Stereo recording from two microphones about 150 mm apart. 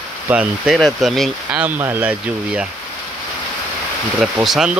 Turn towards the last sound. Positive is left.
turn(degrees=-5)  # may be behind; listen again after turning